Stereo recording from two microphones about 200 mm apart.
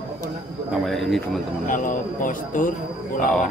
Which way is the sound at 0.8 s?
Centre (ahead or behind).